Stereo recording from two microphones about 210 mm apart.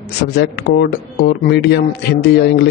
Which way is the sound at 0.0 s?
50° left (ahead or behind).